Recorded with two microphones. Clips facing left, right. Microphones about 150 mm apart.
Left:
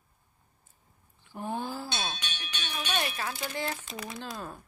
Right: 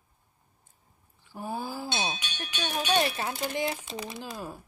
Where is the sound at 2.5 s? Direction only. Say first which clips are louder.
Right 7 dB; 40° right (ahead or behind).